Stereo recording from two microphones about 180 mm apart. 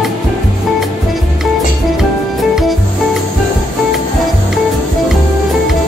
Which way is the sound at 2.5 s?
Centre (ahead or behind).